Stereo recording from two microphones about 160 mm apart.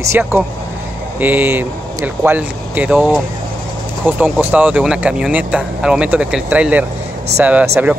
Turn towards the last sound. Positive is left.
turn(degrees=-10)  # may be behind; listen again after turning